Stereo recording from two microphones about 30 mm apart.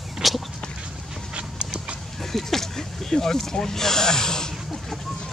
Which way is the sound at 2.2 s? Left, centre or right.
Centre.